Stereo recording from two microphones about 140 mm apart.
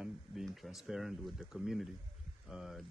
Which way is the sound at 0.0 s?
Centre (ahead or behind).